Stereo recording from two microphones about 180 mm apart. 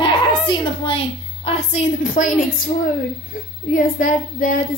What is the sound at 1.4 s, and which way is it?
Child singing, 40° left (ahead or behind).